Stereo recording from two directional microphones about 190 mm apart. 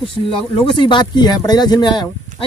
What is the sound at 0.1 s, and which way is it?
Speech, 25° left (ahead or behind).